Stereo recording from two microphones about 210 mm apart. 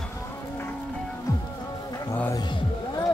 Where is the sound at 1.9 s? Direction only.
15° left (ahead or behind).